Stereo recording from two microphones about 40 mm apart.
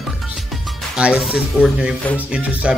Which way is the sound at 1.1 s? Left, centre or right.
Centre.